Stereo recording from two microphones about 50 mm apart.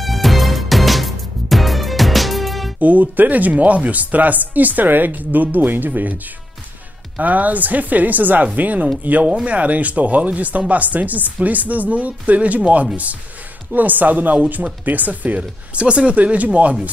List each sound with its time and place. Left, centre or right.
0.0 s music: centre
2.8 s speech: right